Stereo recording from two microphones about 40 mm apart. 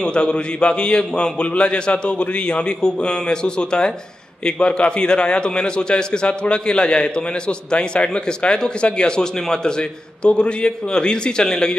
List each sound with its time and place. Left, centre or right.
0.0 s a man's voice: left